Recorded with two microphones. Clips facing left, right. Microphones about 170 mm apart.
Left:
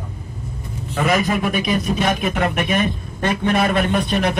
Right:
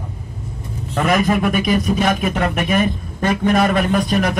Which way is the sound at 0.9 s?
50° right (ahead or behind).